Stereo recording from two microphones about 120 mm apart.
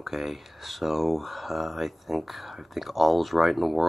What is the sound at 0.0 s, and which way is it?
Speech, centre (ahead or behind).